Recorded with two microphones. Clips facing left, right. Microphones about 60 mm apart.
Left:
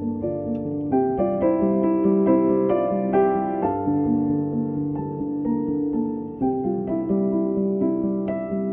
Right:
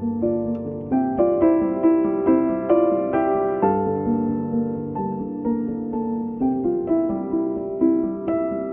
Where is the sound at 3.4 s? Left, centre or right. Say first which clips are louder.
Right 3 dB; right.